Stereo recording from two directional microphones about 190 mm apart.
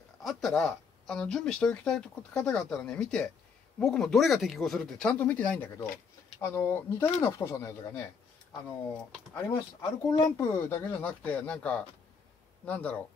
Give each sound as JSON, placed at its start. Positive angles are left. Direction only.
{"t": 0.2, "sound": "speech", "side_deg": 0}
{"t": 9.3, "sound": "speech", "side_deg": 15}